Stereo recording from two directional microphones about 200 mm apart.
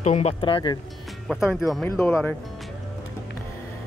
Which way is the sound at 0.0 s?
35° left (ahead or behind).